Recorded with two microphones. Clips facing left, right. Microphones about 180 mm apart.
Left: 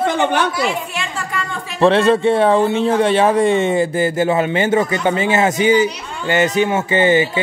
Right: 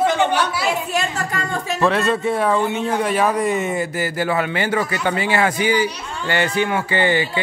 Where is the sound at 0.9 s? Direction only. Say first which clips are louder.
Right 2 dB; 40° right (ahead or behind).